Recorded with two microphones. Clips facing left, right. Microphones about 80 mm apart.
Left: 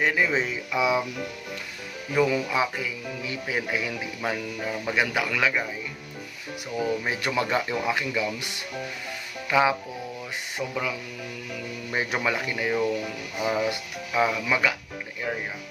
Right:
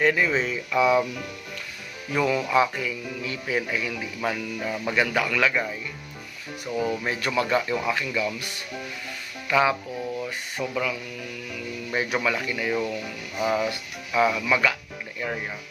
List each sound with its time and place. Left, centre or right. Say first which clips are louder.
0.0 s speech: right 2 dB; centre
2.1 s speech: right 2 dB; centre
6.8 s speech: even; centre
7.1 s speech: right 1 dB; centre
9.5 s speech: even; centre
15.2 s speech: even; centre